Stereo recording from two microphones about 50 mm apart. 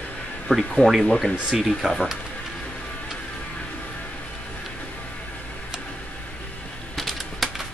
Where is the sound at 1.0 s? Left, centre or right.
Centre.